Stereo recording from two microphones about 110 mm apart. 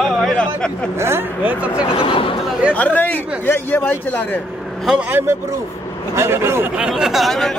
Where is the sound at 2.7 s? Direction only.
15° left (ahead or behind).